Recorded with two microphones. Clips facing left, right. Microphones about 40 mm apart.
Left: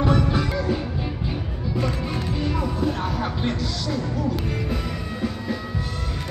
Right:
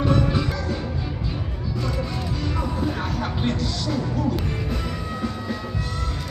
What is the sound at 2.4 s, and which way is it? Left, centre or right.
Music, centre.